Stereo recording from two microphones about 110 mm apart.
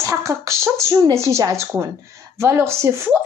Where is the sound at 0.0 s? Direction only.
25° right (ahead or behind).